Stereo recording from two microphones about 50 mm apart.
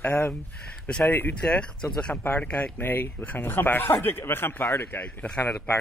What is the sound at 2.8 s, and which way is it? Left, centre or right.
Speech, left.